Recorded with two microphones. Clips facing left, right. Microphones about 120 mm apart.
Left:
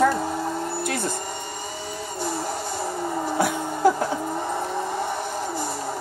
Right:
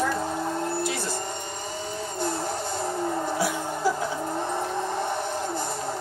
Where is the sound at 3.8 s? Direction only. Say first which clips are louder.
Left 7 dB; 55° left (ahead or behind).